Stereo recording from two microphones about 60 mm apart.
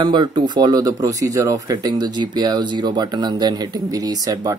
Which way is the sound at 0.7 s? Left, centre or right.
Right.